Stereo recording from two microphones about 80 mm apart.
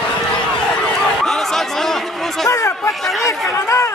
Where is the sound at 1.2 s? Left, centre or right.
Centre.